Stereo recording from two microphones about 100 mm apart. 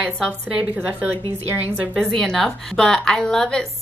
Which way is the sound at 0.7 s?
15° right (ahead or behind).